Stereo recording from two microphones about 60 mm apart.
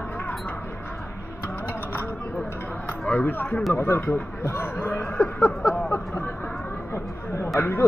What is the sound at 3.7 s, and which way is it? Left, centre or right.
Speech, left.